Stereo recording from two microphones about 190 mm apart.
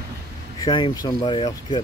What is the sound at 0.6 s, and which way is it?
Speech, 20° left (ahead or behind).